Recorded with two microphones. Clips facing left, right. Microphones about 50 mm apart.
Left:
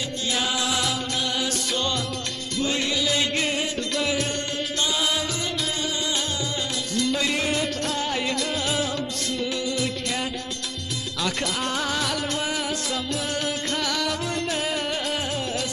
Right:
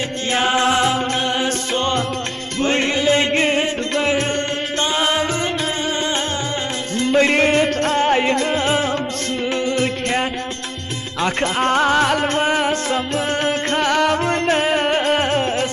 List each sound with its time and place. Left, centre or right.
0.3 s music: right
7.0 s music: right
11.1 s music: right